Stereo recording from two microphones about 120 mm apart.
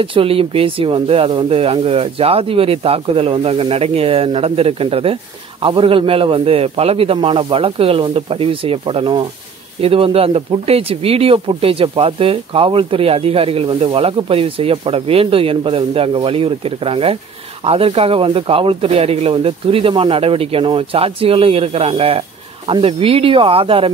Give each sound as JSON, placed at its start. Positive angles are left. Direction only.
{"t": 0.0, "sound": "speech", "side_deg": -50}
{"t": 9.8, "sound": "speech", "side_deg": -50}